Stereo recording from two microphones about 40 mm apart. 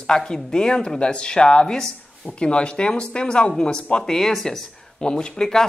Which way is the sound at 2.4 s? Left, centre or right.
Left.